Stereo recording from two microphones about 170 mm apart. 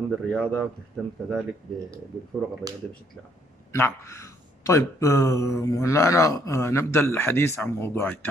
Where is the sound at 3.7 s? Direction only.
15° left (ahead or behind).